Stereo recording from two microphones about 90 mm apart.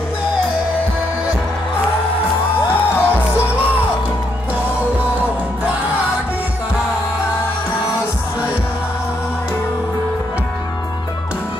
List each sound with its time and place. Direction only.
2.7 s music: 25° left (ahead or behind)